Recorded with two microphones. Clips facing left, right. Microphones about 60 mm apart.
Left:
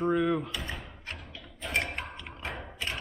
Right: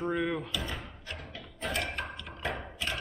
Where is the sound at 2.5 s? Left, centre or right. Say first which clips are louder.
Right 3 dB; centre.